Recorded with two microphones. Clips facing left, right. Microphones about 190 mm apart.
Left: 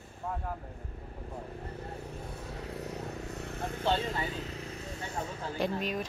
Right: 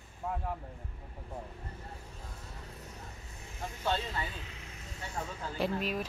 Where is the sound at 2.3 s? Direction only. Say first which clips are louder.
Left 8 dB; 65° left (ahead or behind); by 4.7 s 40° left (ahead or behind).